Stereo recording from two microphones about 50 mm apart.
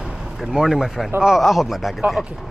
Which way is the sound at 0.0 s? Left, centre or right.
Centre.